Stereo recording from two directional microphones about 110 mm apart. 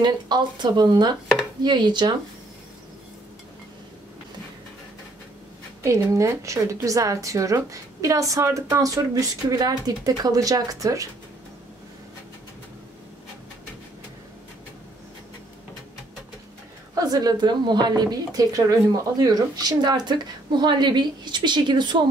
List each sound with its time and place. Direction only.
0.0 s speech: 45° right (ahead or behind)
5.8 s a woman's voice: 25° right (ahead or behind)
16.9 s speech: 35° right (ahead or behind)